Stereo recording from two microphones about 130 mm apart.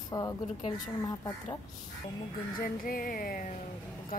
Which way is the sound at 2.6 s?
90° left.